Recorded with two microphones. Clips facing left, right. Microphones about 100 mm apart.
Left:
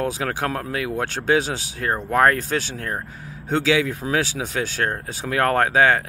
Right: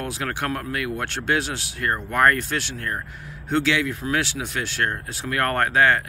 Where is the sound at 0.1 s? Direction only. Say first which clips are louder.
Left 2 dB; 45° left (ahead or behind).